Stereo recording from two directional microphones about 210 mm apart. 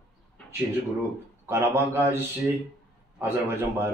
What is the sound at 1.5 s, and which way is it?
Speech, 10° right (ahead or behind).